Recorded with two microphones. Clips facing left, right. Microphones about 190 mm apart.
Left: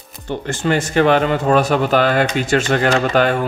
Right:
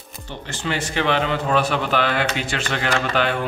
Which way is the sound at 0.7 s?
45° left (ahead or behind).